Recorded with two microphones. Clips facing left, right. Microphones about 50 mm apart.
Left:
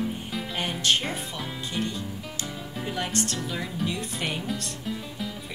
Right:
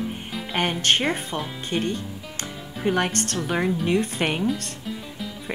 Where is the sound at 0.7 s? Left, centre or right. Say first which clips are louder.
Right 2 dB; right.